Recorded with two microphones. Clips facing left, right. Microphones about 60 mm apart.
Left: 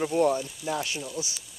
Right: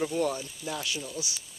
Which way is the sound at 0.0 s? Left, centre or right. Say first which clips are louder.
Left 5 dB; left.